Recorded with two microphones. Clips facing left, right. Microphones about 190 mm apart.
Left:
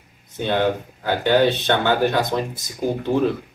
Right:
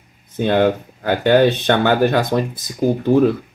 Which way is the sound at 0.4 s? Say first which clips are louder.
Right 5 dB; 50° right (ahead or behind).